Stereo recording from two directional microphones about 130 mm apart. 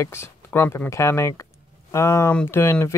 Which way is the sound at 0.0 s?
20° left (ahead or behind).